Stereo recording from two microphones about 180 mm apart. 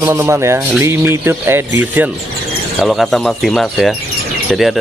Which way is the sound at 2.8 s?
Centre (ahead or behind).